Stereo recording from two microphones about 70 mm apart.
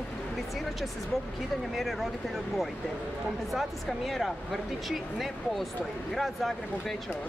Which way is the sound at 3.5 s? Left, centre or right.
Centre.